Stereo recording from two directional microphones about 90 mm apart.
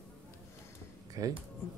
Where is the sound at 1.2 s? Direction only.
40° right (ahead or behind).